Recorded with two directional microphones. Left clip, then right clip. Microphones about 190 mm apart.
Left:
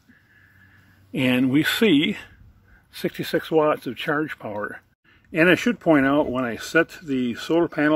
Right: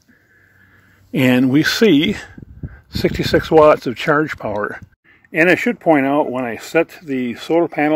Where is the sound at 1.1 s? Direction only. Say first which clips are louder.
Right 7 dB; 45° right (ahead or behind).